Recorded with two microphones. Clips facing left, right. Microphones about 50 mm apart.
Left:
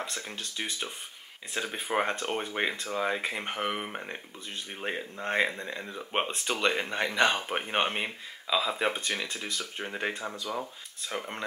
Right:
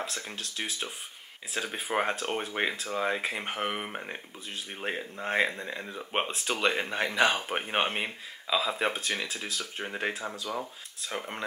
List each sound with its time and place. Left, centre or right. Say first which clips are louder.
0.0 s speech: even; centre